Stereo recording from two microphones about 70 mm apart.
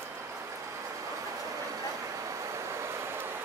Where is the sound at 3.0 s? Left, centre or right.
Right.